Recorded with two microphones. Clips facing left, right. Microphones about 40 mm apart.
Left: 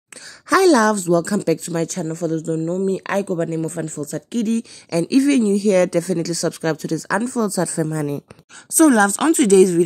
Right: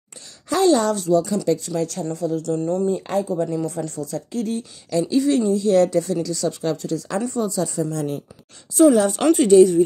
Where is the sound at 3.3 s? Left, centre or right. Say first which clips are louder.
Left 1 dB; left.